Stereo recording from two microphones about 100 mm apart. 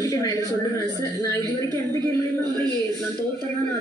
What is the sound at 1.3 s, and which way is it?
Speech, 30° left (ahead or behind).